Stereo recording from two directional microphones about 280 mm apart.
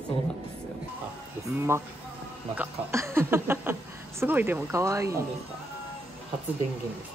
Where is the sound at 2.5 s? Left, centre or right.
Centre.